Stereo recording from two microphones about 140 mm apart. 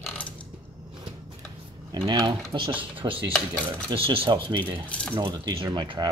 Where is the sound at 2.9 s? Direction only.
40° right (ahead or behind).